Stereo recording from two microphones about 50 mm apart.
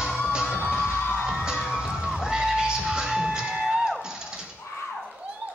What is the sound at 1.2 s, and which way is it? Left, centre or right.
Music, centre.